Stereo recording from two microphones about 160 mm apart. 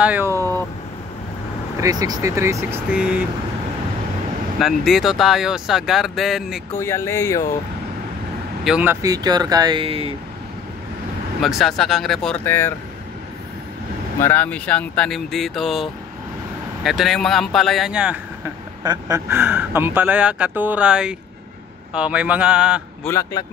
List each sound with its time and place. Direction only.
0.0 s speech: 10° right (ahead or behind)
0.4 s vehicle: 15° left (ahead or behind)
1.8 s speech: 25° right (ahead or behind); by 3.3 s 10° right (ahead or behind)
4.6 s speech: centre (ahead or behind)
6.7 s speech: 15° left (ahead or behind)
8.6 s speech: 5° right (ahead or behind)
9.0 s speech: 25° right (ahead or behind)
11.4 s speech: centre (ahead or behind)
12.4 s speech: 15° left (ahead or behind)
14.2 s speech: 10° left (ahead or behind); by 18.2 s 5° right (ahead or behind)
18.8 s speech: 25° right (ahead or behind); by 22.8 s 5° right (ahead or behind)
23.0 s speech: 15° left (ahead or behind)